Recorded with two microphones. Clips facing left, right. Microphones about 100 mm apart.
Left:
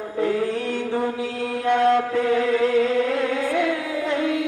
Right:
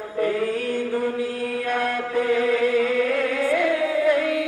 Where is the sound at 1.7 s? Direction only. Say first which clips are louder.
Left 9 dB; 25° left (ahead or behind).